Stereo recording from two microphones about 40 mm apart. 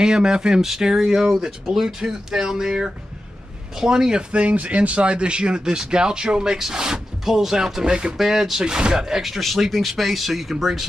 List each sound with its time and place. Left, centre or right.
0.0 s speech: centre
4.3 s speech: right; by 7.8 s centre
7.8 s speech: right
8.2 s speech: centre
9.7 s speech: centre